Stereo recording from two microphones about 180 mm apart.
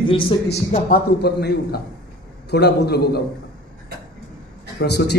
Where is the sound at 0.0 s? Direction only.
30° left (ahead or behind).